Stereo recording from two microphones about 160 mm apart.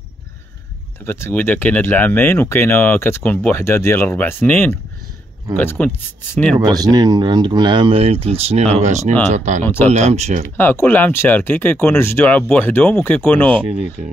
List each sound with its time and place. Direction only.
1.0 s speech: 15° left (ahead or behind)
6.7 s speech: 25° right (ahead or behind); by 9.7 s 45° right (ahead or behind)
9.7 s speech: 15° left (ahead or behind)
9.9 s speech: 45° right (ahead or behind)
10.6 s speech: 15° left (ahead or behind)
13.7 s speech: 10° right (ahead or behind)